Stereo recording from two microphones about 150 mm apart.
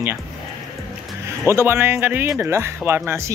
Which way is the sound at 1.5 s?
15° right (ahead or behind).